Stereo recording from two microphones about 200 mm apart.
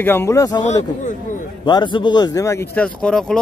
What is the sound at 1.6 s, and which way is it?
A man's voice, 25° left (ahead or behind).